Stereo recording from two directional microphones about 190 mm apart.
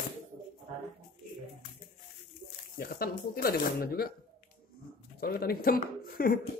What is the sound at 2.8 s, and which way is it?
Speech, 50° left (ahead or behind).